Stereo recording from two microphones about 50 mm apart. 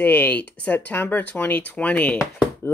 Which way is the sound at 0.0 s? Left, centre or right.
Left.